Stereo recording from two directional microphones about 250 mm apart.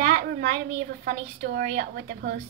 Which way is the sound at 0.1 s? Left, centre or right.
Right.